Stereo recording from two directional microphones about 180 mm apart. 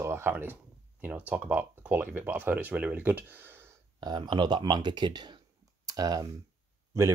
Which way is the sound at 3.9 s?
25° right (ahead or behind).